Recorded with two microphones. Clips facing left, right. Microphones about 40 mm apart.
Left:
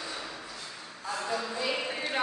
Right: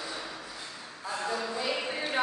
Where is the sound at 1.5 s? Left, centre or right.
Centre.